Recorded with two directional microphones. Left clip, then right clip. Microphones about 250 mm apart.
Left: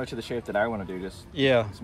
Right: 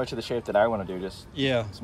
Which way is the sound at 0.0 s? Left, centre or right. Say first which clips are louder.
Right 3 dB; right.